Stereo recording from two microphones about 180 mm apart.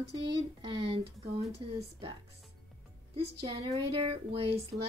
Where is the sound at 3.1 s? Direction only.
35° right (ahead or behind).